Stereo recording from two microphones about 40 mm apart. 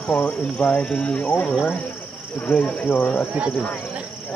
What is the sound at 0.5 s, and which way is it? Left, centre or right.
Speech, left.